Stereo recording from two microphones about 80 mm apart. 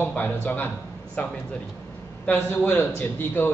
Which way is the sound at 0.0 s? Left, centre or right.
Left.